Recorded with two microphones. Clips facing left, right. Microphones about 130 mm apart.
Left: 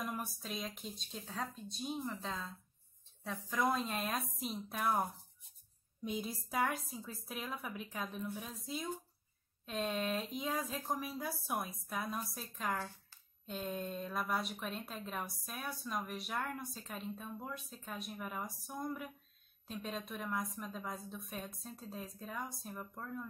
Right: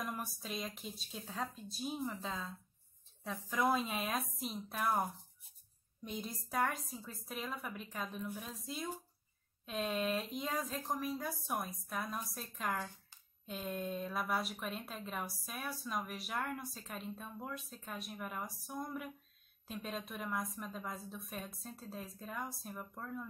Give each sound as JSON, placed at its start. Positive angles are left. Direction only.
{"t": 0.0, "sound": "speech", "side_deg": 0}
{"t": 6.0, "sound": "speech", "side_deg": 0}
{"t": 12.7, "sound": "a sound", "side_deg": -15}
{"t": 13.5, "sound": "speech", "side_deg": 0}